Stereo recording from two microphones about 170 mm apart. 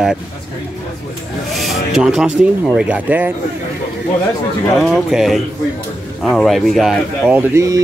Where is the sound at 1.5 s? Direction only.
Centre (ahead or behind).